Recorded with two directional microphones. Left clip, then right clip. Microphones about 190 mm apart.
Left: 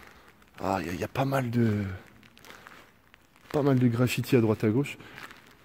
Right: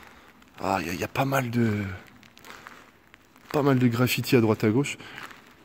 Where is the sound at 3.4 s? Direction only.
Centre (ahead or behind).